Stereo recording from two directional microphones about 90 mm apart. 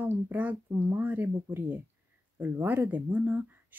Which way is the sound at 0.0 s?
20° right (ahead or behind).